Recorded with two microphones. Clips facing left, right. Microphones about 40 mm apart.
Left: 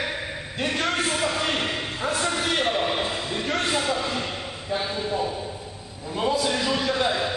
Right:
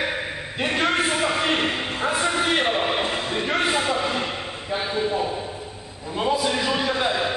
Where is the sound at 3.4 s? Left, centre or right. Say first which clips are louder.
Right 2 dB; centre.